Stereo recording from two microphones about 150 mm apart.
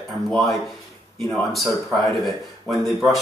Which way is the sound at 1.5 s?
Centre (ahead or behind).